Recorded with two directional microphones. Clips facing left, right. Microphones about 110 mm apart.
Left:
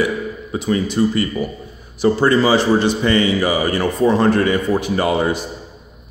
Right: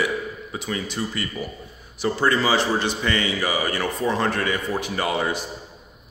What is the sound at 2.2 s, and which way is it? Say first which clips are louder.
A man's voice: left 5 dB; 40° left (ahead or behind).